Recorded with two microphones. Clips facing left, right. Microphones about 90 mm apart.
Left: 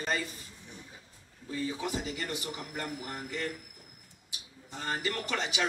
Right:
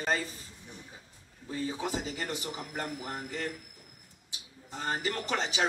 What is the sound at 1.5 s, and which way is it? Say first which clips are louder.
A man's voice: even; 30° right (ahead or behind).